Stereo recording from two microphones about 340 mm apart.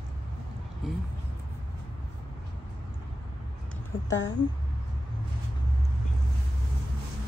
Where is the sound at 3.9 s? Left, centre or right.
Left.